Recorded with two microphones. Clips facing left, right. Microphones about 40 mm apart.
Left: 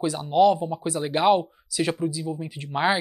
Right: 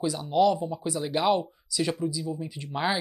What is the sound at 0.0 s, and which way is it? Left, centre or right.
Speech, left.